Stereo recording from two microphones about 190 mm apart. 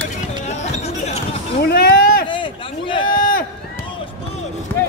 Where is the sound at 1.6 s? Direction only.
55° left (ahead or behind).